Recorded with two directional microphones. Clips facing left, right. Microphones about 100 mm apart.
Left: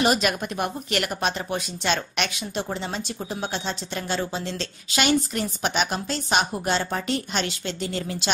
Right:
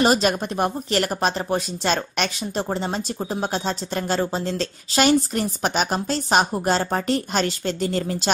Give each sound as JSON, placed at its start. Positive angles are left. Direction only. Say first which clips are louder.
{"t": 0.0, "sound": "speech", "louder": "right 3 dB", "side_deg": -35}